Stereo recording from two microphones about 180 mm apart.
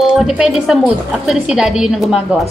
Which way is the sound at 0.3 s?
5° right (ahead or behind).